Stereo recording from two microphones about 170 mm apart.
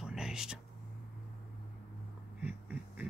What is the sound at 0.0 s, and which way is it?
Whispering, 5° right (ahead or behind).